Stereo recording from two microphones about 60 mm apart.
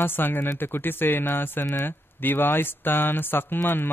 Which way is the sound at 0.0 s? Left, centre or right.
Left.